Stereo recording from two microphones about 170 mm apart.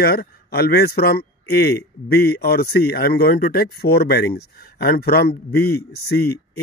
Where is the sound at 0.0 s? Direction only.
65° left (ahead or behind).